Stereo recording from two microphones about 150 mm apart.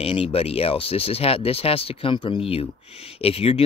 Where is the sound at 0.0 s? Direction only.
40° left (ahead or behind).